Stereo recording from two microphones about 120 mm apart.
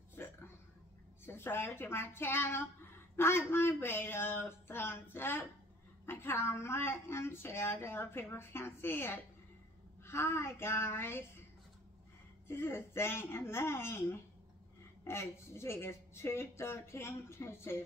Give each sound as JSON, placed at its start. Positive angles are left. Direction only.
{"t": 0.2, "sound": "a sound", "side_deg": 20}
{"t": 1.2, "sound": "a woman's voice", "side_deg": 20}
{"t": 12.4, "sound": "a woman's voice", "side_deg": 20}